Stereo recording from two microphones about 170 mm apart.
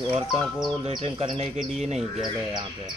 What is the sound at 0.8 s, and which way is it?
Speech, 35° right (ahead or behind).